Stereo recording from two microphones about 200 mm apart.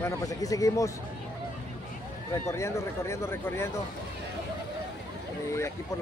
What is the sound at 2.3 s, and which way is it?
Speech, 15° left (ahead or behind).